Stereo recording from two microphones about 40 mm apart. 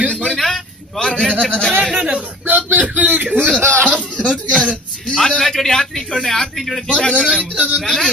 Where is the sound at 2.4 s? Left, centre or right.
Right.